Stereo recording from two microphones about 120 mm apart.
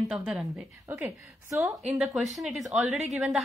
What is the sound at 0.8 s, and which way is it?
Speech, 25° right (ahead or behind).